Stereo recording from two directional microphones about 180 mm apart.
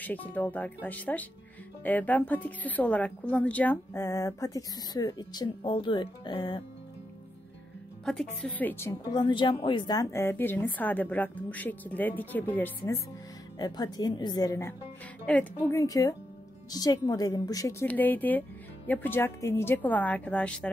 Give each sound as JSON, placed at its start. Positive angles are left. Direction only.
{"t": 0.0, "sound": "a woman's voice", "side_deg": 10}
{"t": 8.0, "sound": "a woman's voice", "side_deg": 0}
{"t": 9.0, "sound": "a woman's voice", "side_deg": 25}
{"t": 13.6, "sound": "a woman's voice", "side_deg": 20}